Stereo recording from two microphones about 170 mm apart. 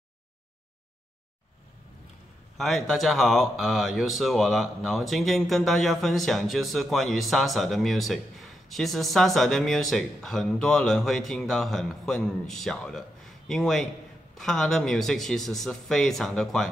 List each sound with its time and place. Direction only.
2.5 s speech: centre (ahead or behind)